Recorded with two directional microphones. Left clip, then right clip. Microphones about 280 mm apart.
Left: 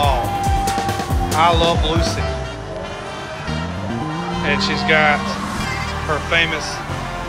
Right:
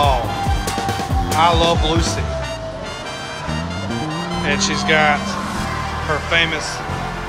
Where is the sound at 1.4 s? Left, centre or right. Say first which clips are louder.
Even; centre.